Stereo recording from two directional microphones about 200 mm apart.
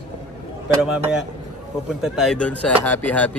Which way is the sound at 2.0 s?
Centre (ahead or behind).